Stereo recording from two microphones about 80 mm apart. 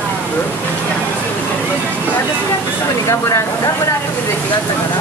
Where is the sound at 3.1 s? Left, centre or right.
Left.